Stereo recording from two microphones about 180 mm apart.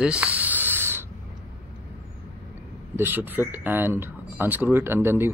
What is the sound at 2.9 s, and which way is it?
Speech, 10° right (ahead or behind).